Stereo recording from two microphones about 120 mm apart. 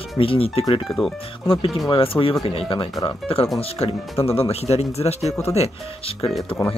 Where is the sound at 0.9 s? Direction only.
Centre (ahead or behind).